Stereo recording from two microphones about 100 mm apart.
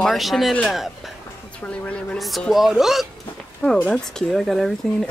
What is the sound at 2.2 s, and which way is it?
Speech, centre (ahead or behind).